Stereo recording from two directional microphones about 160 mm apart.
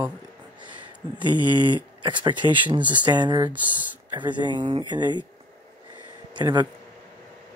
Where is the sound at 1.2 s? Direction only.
30° left (ahead or behind).